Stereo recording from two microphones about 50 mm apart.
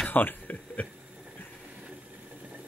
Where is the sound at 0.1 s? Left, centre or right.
Left.